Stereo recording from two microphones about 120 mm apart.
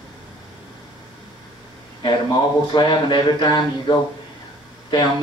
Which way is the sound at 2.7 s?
35° left (ahead or behind).